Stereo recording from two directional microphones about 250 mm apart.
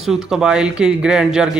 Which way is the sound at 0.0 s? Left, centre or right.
Centre.